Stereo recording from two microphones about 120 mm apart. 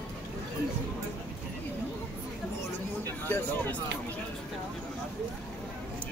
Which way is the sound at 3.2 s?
15° left (ahead or behind).